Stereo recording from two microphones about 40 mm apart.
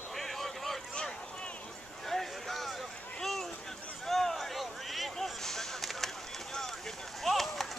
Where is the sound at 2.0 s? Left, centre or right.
Centre.